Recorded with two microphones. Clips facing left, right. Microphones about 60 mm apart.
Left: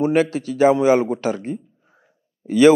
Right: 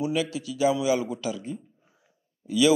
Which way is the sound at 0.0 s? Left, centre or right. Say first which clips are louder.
Left 9 dB; left.